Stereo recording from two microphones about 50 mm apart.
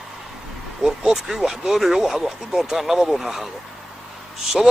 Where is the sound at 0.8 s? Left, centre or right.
Centre.